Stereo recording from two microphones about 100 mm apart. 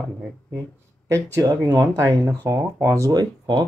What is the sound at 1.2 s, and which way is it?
Speech, 30° right (ahead or behind).